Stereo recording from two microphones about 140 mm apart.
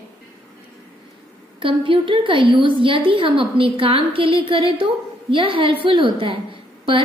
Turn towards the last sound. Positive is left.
turn(degrees=-40)  # may be behind; listen again after turning